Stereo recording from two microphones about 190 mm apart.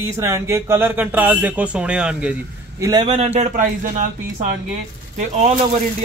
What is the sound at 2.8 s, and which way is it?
Speech, 25° right (ahead or behind).